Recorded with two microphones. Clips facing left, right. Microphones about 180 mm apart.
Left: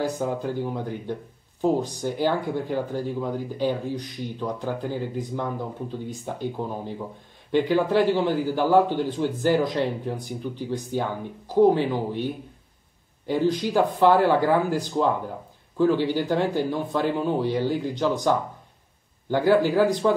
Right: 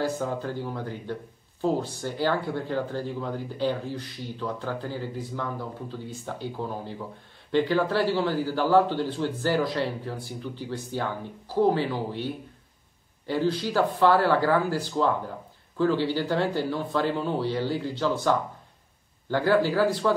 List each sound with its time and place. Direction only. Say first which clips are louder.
0.0 s speech: left 2 dB; 15° left (ahead or behind)
13.3 s speech: left 3 dB; 15° left (ahead or behind)